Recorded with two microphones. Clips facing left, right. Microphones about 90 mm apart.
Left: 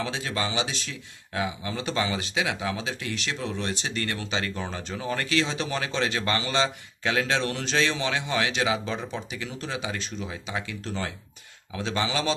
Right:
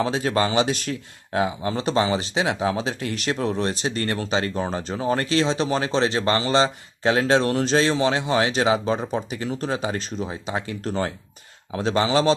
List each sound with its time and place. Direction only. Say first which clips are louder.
0.0 s speech: right 8 dB; 40° right (ahead or behind)